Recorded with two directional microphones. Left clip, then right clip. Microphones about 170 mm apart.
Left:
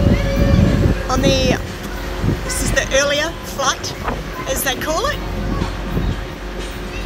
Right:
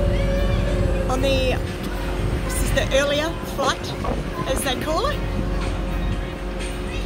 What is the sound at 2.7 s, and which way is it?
Speech, 5° right (ahead or behind).